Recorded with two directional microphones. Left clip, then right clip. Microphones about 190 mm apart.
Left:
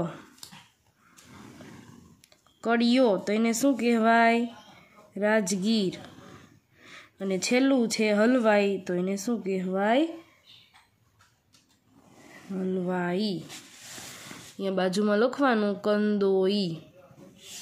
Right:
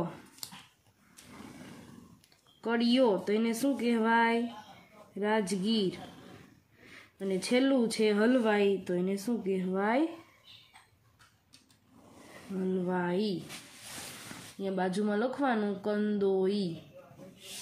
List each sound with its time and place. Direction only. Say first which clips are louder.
2.6 s speech: left 4 dB; 45° left (ahead or behind)
7.2 s speech: left 4 dB; 45° left (ahead or behind)
12.5 s speech: left 3 dB; 40° left (ahead or behind)
14.6 s speech: left 5 dB; 45° left (ahead or behind)